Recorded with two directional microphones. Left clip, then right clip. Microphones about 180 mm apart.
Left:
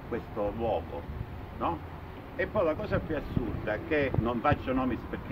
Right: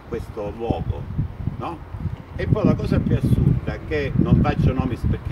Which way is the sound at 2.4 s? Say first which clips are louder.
Right 5 dB; 5° right (ahead or behind).